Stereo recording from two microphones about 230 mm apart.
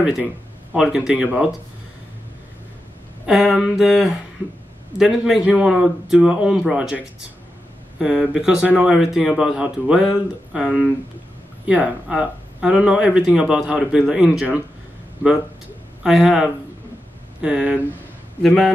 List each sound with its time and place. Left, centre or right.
0.0 s speech: centre
3.3 s speech: centre
8.0 s speech: centre
16.0 s speech: centre